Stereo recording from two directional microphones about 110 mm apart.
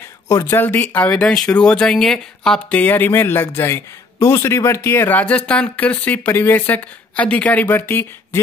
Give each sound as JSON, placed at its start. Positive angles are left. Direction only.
{"t": 0.3, "sound": "speech", "side_deg": 25}
{"t": 1.2, "sound": "speech", "side_deg": 5}